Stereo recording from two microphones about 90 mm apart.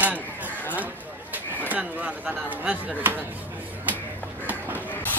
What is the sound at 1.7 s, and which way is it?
Speech, 15° right (ahead or behind).